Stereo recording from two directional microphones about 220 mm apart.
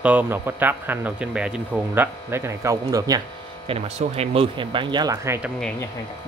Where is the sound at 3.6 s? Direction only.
30° right (ahead or behind); by 5.5 s 10° right (ahead or behind).